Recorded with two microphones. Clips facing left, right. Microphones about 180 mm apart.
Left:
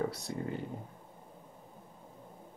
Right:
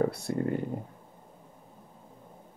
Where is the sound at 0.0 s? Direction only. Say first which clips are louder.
Right 7 dB; 55° right (ahead or behind).